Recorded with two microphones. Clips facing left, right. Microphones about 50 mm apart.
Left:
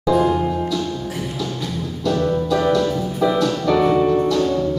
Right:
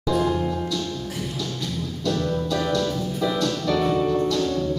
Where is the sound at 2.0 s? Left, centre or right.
Centre.